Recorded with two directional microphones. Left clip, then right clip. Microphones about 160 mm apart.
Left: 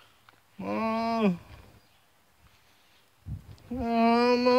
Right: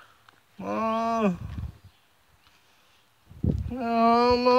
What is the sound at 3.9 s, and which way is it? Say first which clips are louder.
Speech: right 3 dB; 10° left (ahead or behind).